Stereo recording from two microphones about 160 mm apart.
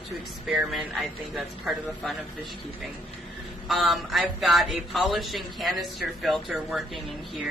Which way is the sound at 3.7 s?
Centre (ahead or behind).